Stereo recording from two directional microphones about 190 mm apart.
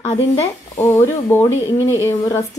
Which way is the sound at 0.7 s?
15° left (ahead or behind).